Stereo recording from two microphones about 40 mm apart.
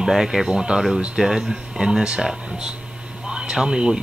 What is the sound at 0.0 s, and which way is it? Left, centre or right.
Speech, centre.